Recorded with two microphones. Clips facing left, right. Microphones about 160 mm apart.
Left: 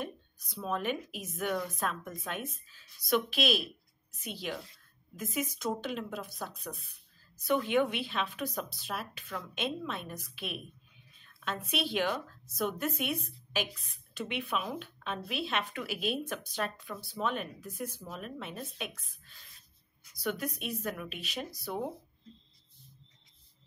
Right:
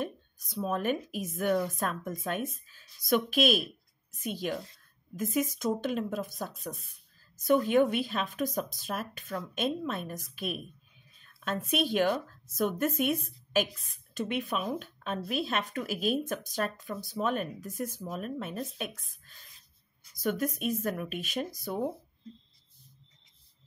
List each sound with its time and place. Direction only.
0.0 s a woman's voice: 45° right (ahead or behind)